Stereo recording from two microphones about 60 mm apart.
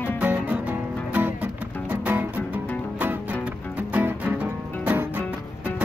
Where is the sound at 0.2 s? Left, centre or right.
Right.